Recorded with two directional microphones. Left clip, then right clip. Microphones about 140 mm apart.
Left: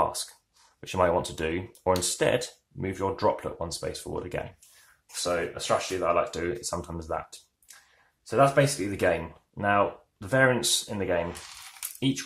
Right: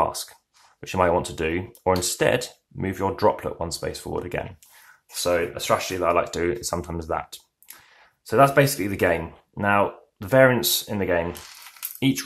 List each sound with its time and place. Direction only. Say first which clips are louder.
0.0 s speech: right 3 dB; 20° right (ahead or behind)
5.2 s speech: right 6 dB; 45° right (ahead or behind)